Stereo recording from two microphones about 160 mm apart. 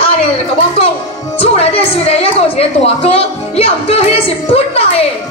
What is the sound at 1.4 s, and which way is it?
A woman's voice, 35° left (ahead or behind).